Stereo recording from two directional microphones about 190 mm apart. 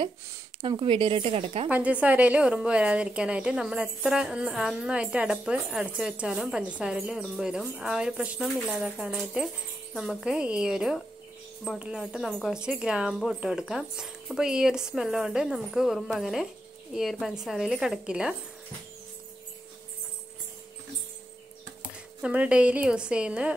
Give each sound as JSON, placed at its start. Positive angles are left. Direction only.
{"t": 0.6, "sound": "speech", "side_deg": -25}
{"t": 1.7, "sound": "a woman's voice", "side_deg": -5}
{"t": 21.8, "sound": "a woman's voice", "side_deg": -5}